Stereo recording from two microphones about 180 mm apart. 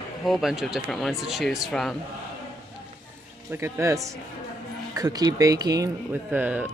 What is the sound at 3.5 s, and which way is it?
Speech, 15° right (ahead or behind).